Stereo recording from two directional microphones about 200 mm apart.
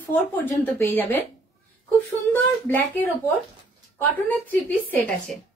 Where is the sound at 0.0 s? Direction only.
10° left (ahead or behind).